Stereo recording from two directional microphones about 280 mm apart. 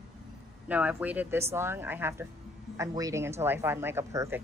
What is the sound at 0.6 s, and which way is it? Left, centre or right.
Speech, centre.